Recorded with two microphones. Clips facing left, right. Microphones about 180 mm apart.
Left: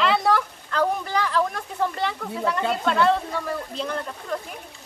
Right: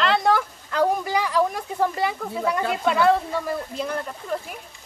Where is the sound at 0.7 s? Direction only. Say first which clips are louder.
Right 2 dB; 10° right (ahead or behind).